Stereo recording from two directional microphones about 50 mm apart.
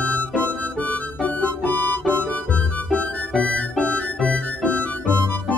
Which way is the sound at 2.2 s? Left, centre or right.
Left.